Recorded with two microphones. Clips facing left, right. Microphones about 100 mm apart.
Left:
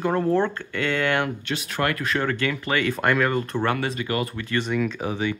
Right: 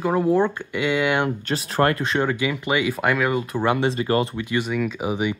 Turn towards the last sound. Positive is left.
turn(degrees=-15)  # may be behind; listen again after turning